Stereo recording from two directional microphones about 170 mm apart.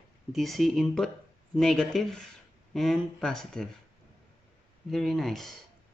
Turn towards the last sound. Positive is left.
turn(degrees=0)  # may be behind; listen again after turning